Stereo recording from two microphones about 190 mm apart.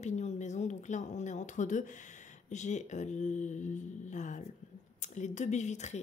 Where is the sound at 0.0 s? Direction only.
40° left (ahead or behind).